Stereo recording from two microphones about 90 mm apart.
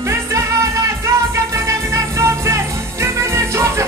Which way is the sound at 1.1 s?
35° right (ahead or behind).